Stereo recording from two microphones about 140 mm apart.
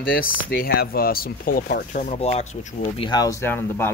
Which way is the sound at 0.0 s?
90° left.